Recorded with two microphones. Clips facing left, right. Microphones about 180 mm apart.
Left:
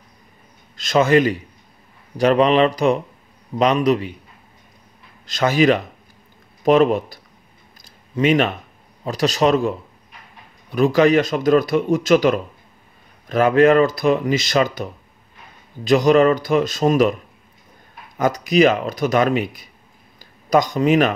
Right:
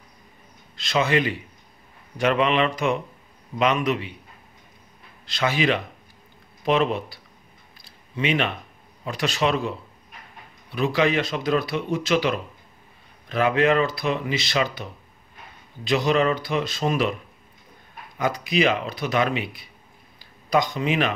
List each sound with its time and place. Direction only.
0.7 s speech: 45° left (ahead or behind)
5.2 s speech: 45° left (ahead or behind)
7.8 s a sound: 45° left (ahead or behind)
9.0 s speech: 40° left (ahead or behind)
18.1 s speech: 45° left (ahead or behind)
20.2 s a sound: 45° left (ahead or behind)